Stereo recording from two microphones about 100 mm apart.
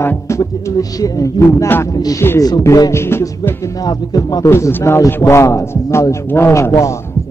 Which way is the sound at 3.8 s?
40° left (ahead or behind).